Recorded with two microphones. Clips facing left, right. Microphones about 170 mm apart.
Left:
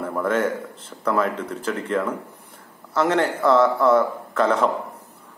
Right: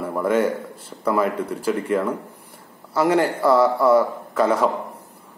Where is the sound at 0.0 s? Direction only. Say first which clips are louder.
Right 2 dB; 5° right (ahead or behind).